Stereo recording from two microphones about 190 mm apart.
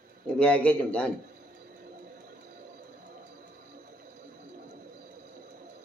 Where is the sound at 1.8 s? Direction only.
50° right (ahead or behind).